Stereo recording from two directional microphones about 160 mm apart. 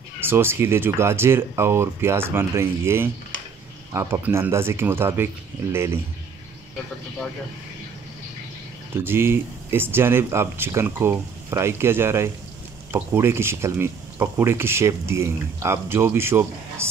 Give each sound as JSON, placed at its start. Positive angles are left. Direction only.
{"t": 0.2, "sound": "speech", "side_deg": -15}
{"t": 8.9, "sound": "speech", "side_deg": -15}